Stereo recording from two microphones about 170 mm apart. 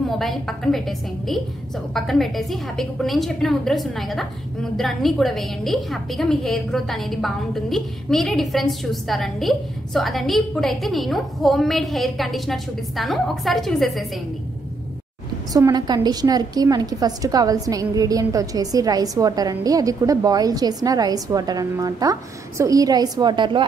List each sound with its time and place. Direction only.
0.2 s a woman's voice: centre (ahead or behind)
15.5 s a woman's voice: 20° right (ahead or behind)